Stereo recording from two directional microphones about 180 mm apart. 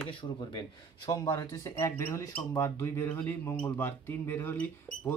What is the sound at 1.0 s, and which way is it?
Speech, 15° left (ahead or behind).